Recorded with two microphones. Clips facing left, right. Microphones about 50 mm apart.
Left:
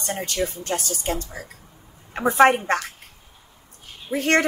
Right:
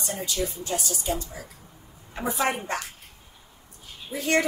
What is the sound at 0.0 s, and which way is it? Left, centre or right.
A woman's voice, left.